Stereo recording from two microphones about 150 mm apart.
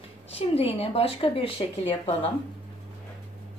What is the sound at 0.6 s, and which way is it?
Speech, 40° left (ahead or behind).